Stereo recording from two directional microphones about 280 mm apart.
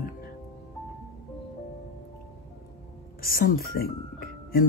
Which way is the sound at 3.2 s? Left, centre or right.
Left.